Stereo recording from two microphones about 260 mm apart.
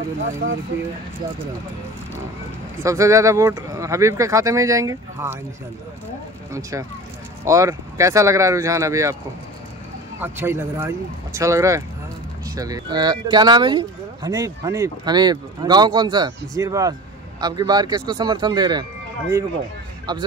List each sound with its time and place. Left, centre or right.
2.8 s speech: centre
6.5 s speech: centre
10.2 s speech: centre